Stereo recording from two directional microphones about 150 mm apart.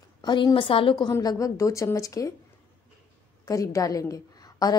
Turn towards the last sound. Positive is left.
turn(degrees=25)  # may be behind; listen again after turning